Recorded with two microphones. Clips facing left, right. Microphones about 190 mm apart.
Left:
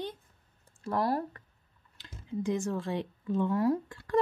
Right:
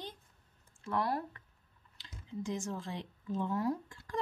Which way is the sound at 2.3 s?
60° left (ahead or behind).